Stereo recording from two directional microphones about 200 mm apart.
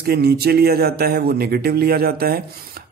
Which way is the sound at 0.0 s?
50° right (ahead or behind).